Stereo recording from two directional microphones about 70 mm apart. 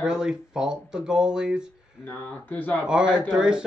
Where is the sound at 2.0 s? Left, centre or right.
Left.